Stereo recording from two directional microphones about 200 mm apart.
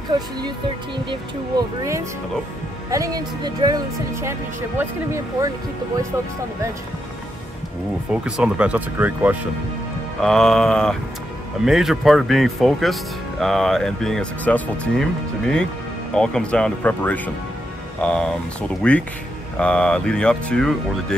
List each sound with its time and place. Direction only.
0.9 s speech: 20° right (ahead or behind)
8.1 s speech: 5° right (ahead or behind)